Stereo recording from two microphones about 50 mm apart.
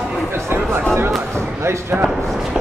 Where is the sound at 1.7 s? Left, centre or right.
Right.